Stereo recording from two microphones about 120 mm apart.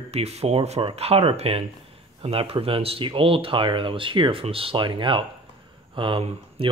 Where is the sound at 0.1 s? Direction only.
60° right (ahead or behind).